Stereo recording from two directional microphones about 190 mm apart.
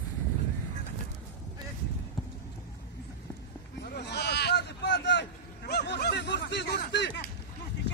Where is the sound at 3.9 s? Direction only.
60° left (ahead or behind).